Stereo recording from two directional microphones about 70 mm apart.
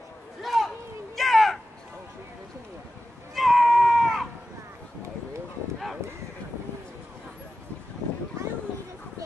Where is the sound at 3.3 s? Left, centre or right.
Centre.